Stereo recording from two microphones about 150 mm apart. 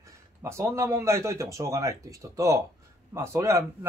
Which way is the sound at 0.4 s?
20° right (ahead or behind).